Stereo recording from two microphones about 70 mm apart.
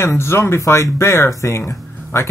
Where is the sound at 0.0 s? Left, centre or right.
Left.